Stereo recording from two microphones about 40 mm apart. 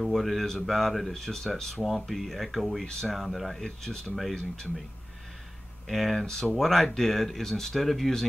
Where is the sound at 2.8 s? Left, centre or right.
Centre.